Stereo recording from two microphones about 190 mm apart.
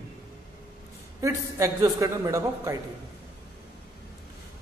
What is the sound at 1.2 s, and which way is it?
A man's voice, 15° right (ahead or behind).